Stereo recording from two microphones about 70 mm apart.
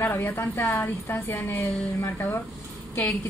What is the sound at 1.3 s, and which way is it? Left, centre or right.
Speech, left.